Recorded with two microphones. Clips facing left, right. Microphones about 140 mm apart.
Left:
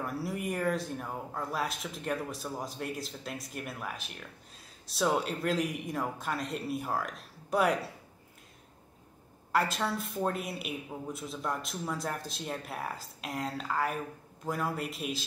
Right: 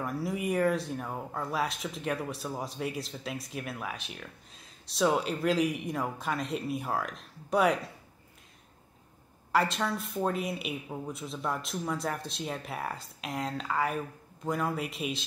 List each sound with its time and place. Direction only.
0.0 s speech: centre (ahead or behind)
9.5 s speech: centre (ahead or behind)